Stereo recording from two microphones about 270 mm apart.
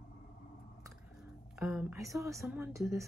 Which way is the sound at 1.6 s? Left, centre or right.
Centre.